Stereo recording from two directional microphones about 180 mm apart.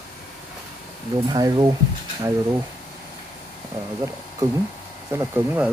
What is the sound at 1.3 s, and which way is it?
Speech, 20° right (ahead or behind).